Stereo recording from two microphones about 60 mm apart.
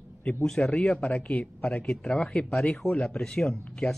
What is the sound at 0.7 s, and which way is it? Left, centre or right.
Speech, centre.